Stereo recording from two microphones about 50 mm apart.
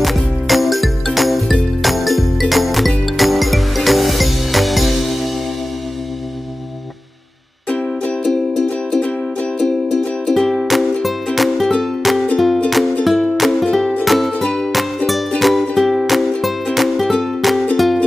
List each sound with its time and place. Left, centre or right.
0.0 s music: centre
7.7 s music: left
8.2 s music: centre
14.4 s music: centre
15.0 s music: centre